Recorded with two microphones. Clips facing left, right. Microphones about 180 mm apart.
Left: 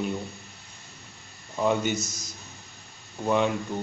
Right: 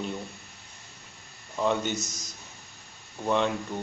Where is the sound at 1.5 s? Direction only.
10° left (ahead or behind).